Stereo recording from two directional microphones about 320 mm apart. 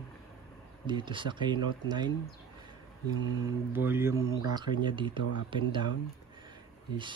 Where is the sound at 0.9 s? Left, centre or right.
Centre.